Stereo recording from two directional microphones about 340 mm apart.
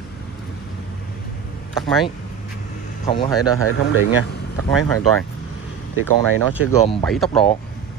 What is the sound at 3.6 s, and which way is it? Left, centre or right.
Speech, left.